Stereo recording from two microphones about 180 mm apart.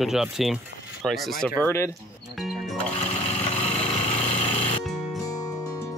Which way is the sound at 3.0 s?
35° left (ahead or behind).